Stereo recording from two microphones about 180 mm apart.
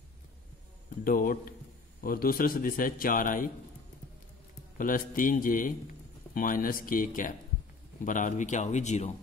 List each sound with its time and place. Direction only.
1.0 s a man's voice: 50° left (ahead or behind)
4.7 s a man's voice: 50° left (ahead or behind)